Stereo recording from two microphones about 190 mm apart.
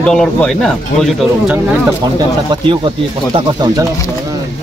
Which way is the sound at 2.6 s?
25° right (ahead or behind).